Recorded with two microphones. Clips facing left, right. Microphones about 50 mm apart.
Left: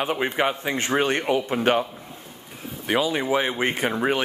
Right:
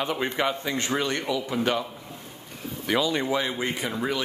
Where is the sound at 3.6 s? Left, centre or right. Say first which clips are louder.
Left 5 dB; left.